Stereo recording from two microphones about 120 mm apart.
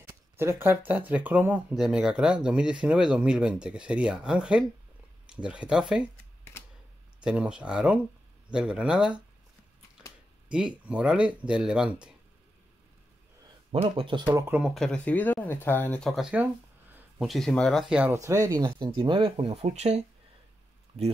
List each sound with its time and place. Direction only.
0.1 s speech: 20° right (ahead or behind)
7.2 s speech: 10° right (ahead or behind)
10.5 s speech: 10° right (ahead or behind)
13.7 s speech: 50° right (ahead or behind)
14.7 s speech: 5° left (ahead or behind)
15.0 s speech: 15° left (ahead or behind)
16.0 s speech: 5° left (ahead or behind)
17.8 s speech: 10° right (ahead or behind)
18.1 s speech: 25° right (ahead or behind)
18.8 s speech: 40° right (ahead or behind); by 20.0 s 65° right (ahead or behind)